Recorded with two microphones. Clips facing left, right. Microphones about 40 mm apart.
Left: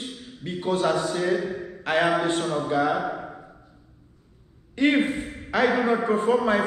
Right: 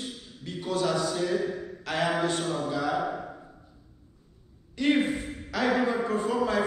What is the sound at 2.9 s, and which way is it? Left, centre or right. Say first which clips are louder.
Speech: left 2 dB; centre.